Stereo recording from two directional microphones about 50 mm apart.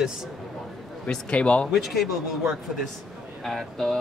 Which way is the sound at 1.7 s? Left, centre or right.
Centre.